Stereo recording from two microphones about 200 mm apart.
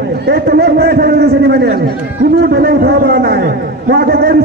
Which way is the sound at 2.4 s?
50° right (ahead or behind).